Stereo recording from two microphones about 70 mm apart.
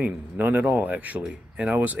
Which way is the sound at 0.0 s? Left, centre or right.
Right.